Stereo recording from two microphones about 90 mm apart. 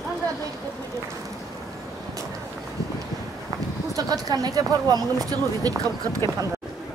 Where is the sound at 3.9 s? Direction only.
45° right (ahead or behind).